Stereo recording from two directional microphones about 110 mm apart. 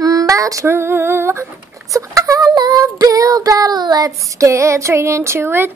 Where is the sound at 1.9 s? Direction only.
30° right (ahead or behind).